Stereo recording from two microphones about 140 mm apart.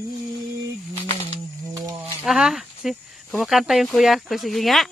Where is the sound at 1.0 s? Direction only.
35° left (ahead or behind).